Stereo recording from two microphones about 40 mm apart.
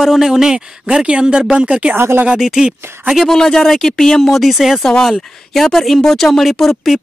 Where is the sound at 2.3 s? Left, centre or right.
Centre.